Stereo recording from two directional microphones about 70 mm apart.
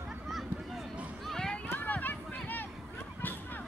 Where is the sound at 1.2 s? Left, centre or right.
Centre.